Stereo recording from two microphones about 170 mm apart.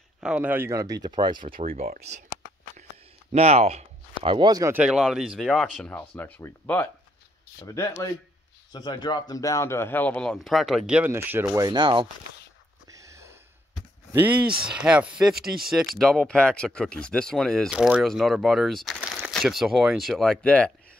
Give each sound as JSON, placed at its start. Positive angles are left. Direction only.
{"t": 0.2, "sound": "speech", "side_deg": -10}
{"t": 1.4, "sound": "speech", "side_deg": -55}
{"t": 3.3, "sound": "speech", "side_deg": -40}
{"t": 4.7, "sound": "speech", "side_deg": -5}
{"t": 14.1, "sound": "speech", "side_deg": -10}